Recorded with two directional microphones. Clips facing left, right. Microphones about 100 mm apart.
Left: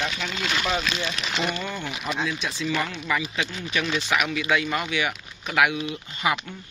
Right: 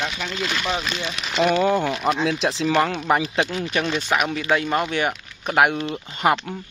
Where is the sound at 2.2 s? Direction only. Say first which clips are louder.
Right 6 dB; 75° right (ahead or behind).